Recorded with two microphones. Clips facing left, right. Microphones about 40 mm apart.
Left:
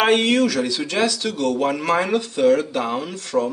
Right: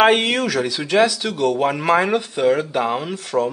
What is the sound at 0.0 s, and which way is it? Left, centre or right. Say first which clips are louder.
Speech: right 1 dB; centre.